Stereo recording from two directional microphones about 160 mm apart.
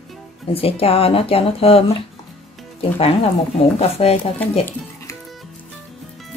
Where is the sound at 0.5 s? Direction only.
35° left (ahead or behind).